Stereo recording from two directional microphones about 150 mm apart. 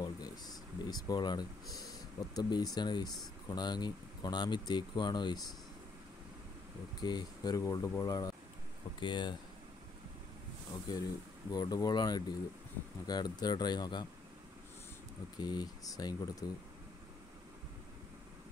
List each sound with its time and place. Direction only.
0.0 s speech: 25° left (ahead or behind)
7.0 s speech: 30° left (ahead or behind)
10.9 s speech: 25° left (ahead or behind)
15.3 s speech: 30° left (ahead or behind)